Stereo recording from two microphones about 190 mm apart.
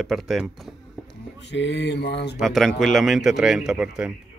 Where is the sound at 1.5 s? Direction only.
70° left (ahead or behind).